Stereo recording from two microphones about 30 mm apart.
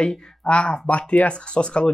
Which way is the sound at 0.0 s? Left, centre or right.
Left.